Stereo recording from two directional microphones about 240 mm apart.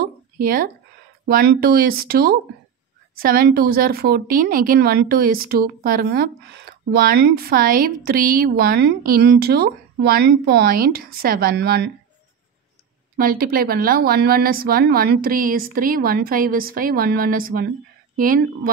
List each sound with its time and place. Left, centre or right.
0.0 s a sound: right
1.2 s a woman's voice: right
13.2 s a woman's voice: right